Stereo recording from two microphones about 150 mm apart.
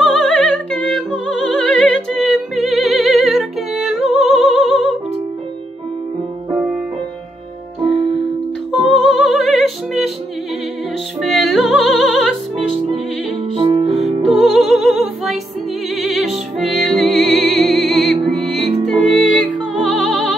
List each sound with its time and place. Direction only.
0.0 s opera: 5° left (ahead or behind)
7.8 s music: 35° right (ahead or behind)
8.7 s music: 5° left (ahead or behind)
11.1 s music: centre (ahead or behind)
12.5 s music: 40° right (ahead or behind)
14.2 s music: centre (ahead or behind)